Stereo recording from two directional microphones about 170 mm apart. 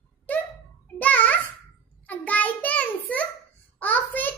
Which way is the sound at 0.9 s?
10° left (ahead or behind).